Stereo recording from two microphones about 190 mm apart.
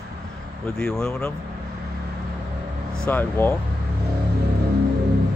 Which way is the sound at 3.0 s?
10° left (ahead or behind).